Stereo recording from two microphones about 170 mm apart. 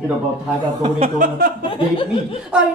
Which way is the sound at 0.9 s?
50° right (ahead or behind).